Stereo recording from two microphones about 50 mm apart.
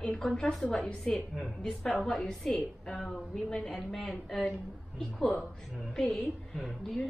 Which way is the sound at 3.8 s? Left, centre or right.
Centre.